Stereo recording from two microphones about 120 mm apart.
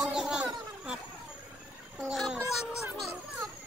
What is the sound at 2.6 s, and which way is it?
Music, 25° left (ahead or behind).